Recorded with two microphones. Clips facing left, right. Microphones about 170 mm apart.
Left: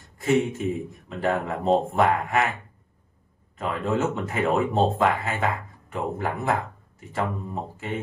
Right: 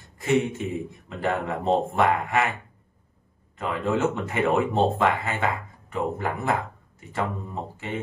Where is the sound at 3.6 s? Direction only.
Centre (ahead or behind).